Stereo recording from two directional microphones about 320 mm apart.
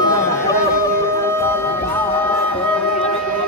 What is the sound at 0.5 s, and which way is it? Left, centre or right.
Music, centre.